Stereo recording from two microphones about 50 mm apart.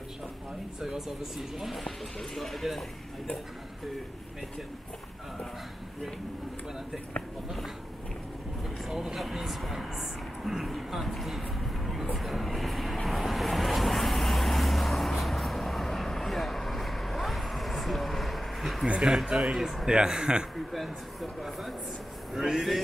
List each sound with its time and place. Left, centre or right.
0.7 s speech: centre
1.9 s speech: centre
8.6 s speech: centre
12.2 s vehicle: centre
18.9 s speech: centre
19.9 s speech: centre
20.5 s speech: centre